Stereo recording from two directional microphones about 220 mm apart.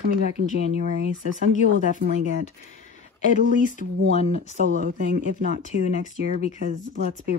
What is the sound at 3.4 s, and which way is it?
Speech, 35° left (ahead or behind).